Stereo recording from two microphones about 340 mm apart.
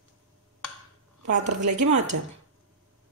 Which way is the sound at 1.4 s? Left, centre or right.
Right.